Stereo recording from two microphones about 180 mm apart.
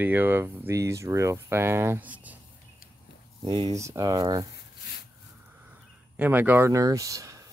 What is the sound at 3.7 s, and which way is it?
Speech, 15° right (ahead or behind).